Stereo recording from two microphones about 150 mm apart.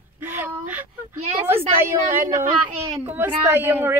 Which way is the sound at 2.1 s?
15° right (ahead or behind).